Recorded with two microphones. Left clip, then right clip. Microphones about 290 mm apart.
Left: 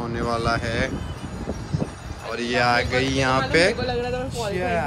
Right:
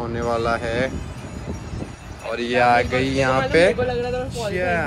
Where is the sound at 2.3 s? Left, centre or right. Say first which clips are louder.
Right 4 dB; centre.